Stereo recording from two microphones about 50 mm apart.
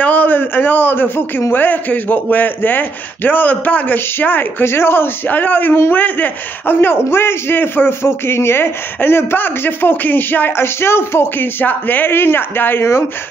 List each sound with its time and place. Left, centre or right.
0.0 s a man's voice: left
4.6 s a man's voice: left
10.6 s speech: left
11.6 s a man's voice: left
12.1 s a man's voice: left